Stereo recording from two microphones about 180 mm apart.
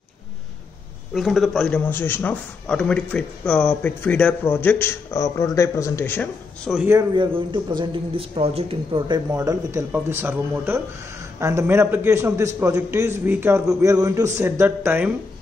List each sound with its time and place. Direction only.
1.1 s speech: centre (ahead or behind)
7.2 s a man's voice: 25° right (ahead or behind); by 15.1 s 10° right (ahead or behind)